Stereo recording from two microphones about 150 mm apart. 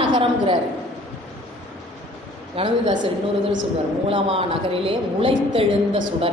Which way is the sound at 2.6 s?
40° right (ahead or behind).